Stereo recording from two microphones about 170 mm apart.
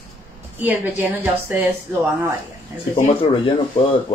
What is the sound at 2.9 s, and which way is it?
Speech, 35° left (ahead or behind).